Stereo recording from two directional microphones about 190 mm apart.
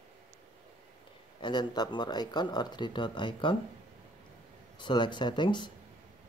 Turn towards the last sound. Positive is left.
turn(degrees=25)  # may be behind; listen again after turning